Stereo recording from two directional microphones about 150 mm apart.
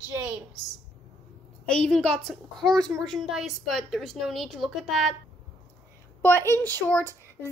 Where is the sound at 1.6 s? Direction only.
5° left (ahead or behind).